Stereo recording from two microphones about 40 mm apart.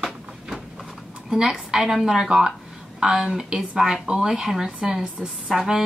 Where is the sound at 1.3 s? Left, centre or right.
Centre.